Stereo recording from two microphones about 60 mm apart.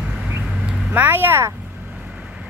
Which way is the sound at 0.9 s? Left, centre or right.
Right.